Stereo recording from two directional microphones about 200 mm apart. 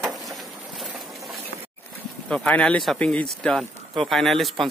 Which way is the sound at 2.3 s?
5° left (ahead or behind).